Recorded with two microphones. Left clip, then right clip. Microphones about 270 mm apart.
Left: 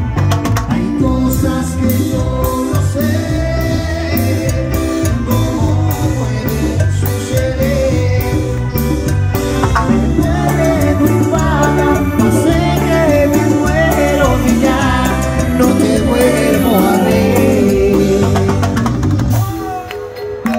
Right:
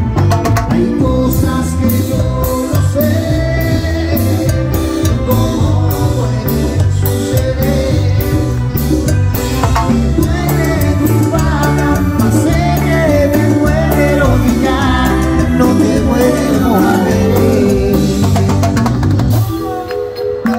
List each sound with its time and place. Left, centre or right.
11.3 s music: left